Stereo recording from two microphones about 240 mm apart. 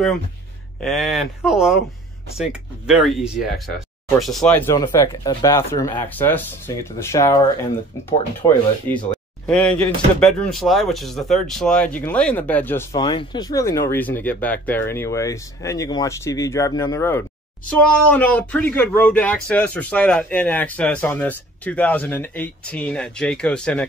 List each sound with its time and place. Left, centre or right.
0.8 s speech: centre
2.9 s speech: centre